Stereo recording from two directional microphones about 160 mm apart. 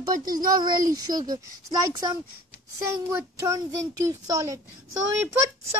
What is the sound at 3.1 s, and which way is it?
A child's voice, 20° right (ahead or behind).